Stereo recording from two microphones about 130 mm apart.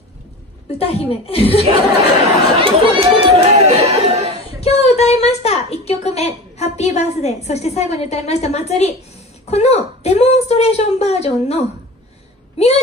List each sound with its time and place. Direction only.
0.7 s a woman's voice: 50° left (ahead or behind)
2.6 s chatter: 45° right (ahead or behind)
4.6 s a woman's voice: 50° left (ahead or behind)